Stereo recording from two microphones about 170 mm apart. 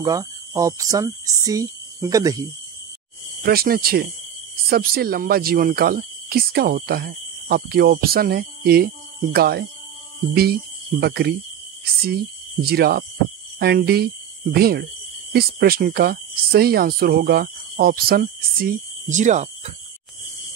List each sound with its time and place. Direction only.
0.0 s speech: 20° right (ahead or behind)
3.4 s speech: 60° right (ahead or behind)
11.0 s speech: 70° right (ahead or behind); by 19.7 s 45° right (ahead or behind)